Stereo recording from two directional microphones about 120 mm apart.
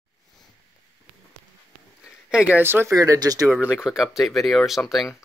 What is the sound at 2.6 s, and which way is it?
Speech, 20° right (ahead or behind).